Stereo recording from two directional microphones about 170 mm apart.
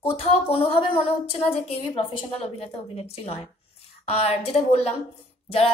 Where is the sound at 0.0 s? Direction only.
35° left (ahead or behind).